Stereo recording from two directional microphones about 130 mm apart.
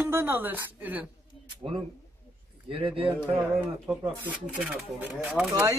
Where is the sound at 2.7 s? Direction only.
45° right (ahead or behind).